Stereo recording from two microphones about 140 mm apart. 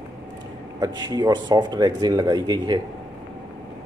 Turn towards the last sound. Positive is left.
turn(degrees=-30)  # may be behind; listen again after turning